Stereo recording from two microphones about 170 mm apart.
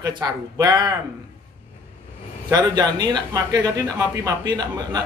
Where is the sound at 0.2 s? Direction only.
25° right (ahead or behind).